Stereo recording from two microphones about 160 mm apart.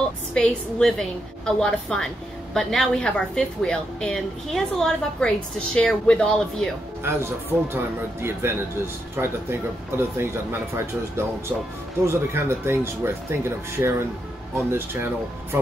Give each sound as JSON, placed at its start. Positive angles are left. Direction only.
{"t": 0.3, "sound": "a woman's voice", "side_deg": 5}
{"t": 7.0, "sound": "speech", "side_deg": -15}
{"t": 12.1, "sound": "speech", "side_deg": -15}